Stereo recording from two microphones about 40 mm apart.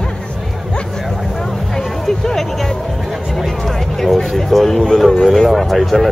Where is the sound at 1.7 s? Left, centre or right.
Centre.